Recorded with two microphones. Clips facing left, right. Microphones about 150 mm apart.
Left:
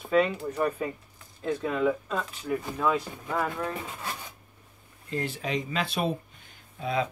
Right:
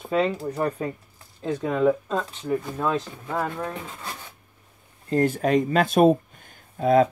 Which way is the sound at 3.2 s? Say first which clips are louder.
Right 1 dB; 10° right (ahead or behind).